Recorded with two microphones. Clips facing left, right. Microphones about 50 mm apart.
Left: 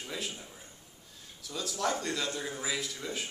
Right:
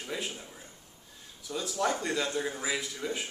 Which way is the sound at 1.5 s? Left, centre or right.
Centre.